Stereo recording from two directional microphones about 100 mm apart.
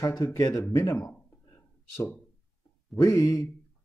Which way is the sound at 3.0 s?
25° left (ahead or behind).